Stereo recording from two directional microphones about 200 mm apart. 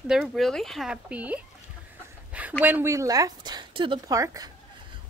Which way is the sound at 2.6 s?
10° right (ahead or behind).